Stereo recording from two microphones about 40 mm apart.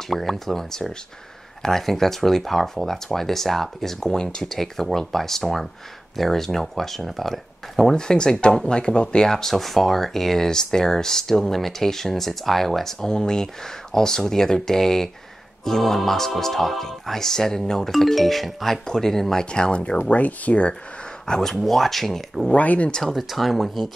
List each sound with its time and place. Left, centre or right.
0.1 s speech: centre
4.5 s speech: centre
7.9 s speech: centre
13.0 s speech: centre
19.5 s speech: left
20.0 s speech: left
21.3 s speech: centre
22.5 s speech: left
23.0 s speech: centre